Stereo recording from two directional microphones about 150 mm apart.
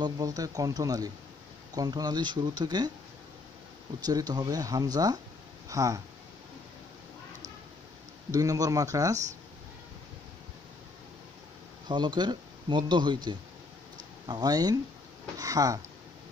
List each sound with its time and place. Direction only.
0.0 s speech: 25° right (ahead or behind)
4.0 s speech: 25° right (ahead or behind)
8.3 s speech: 25° right (ahead or behind)
11.9 s speech: 30° right (ahead or behind)